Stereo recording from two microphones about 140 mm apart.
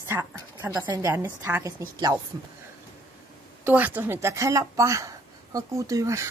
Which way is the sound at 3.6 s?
15° right (ahead or behind).